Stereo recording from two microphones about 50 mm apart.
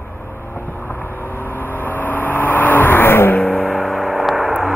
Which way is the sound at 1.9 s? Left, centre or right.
Left.